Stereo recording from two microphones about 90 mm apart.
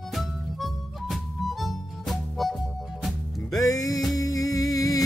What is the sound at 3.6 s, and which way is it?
Music, 40° left (ahead or behind).